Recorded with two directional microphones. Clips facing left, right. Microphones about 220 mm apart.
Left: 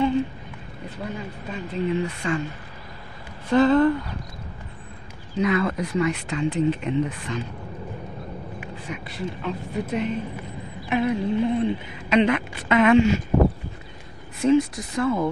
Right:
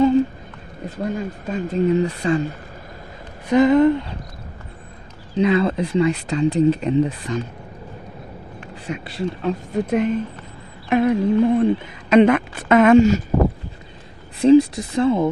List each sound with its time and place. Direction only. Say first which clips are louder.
0.8 s speech: right 8 dB; 45° right (ahead or behind)
3.4 s speech: right 3 dB; 20° right (ahead or behind)
5.3 s speech: right 5 dB; 30° right (ahead or behind)
8.8 s speech: right 7 dB; 30° right (ahead or behind)
10.9 s speech: right 6 dB; 50° right (ahead or behind)
14.4 s speech: right 7 dB; 30° right (ahead or behind)